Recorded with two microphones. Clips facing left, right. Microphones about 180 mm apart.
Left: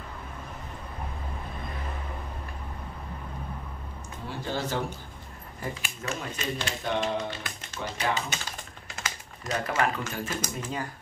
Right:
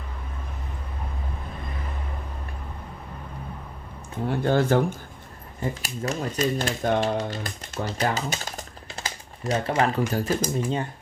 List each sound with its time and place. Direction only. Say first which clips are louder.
4.3 s speech: right 10 dB; 55° right (ahead or behind)
5.8 s speech: right 6 dB; 40° right (ahead or behind)